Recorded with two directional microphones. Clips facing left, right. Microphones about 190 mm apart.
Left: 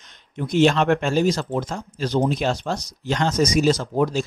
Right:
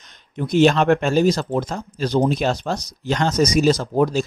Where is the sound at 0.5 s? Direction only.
40° right (ahead or behind).